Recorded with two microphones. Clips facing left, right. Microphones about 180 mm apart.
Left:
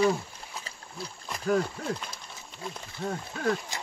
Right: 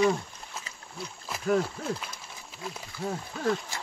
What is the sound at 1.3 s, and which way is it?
Speech, centre (ahead or behind).